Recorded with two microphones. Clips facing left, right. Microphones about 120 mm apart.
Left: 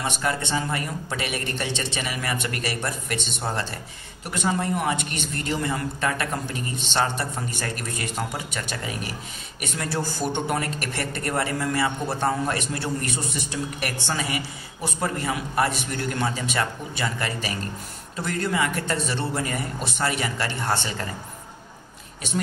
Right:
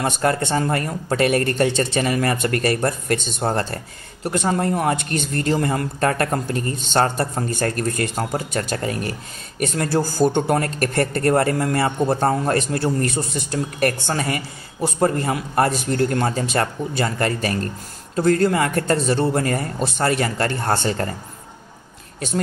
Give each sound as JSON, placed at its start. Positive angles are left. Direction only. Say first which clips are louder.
{"t": 0.0, "sound": "speech", "louder": "right 6 dB", "side_deg": -45}